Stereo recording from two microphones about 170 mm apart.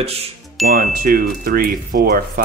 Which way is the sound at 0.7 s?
60° right (ahead or behind).